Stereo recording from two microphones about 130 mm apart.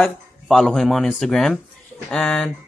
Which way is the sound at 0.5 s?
Centre (ahead or behind).